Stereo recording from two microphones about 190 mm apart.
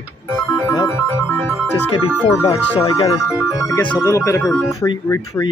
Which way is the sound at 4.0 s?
15° left (ahead or behind).